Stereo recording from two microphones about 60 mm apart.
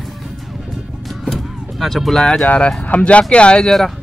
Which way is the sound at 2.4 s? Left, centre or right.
Left.